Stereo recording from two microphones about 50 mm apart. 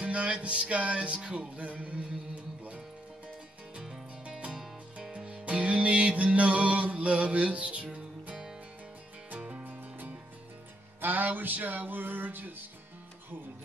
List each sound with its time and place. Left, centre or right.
0.0 s music: right
3.7 s music: centre
9.3 s music: right